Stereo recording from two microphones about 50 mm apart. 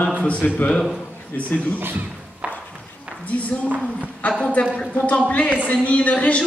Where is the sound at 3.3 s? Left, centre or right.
Left.